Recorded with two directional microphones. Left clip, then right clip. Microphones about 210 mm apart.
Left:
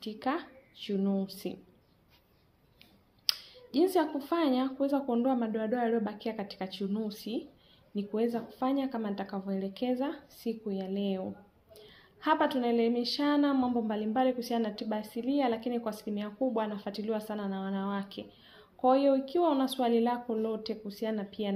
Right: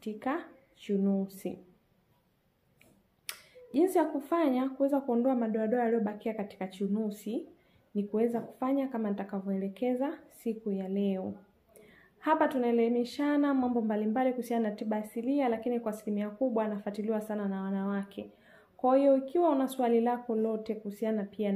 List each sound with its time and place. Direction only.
0.0 s speech: 25° left (ahead or behind)
3.7 s speech: 30° left (ahead or behind)
11.9 s a sound: 25° left (ahead or behind)
12.5 s speech: 25° left (ahead or behind)